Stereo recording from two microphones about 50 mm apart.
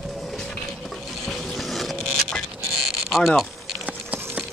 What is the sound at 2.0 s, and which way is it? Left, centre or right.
Vehicle, centre.